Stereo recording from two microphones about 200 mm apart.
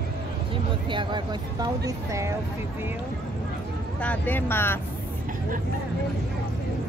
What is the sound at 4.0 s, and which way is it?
Speech, 10° left (ahead or behind).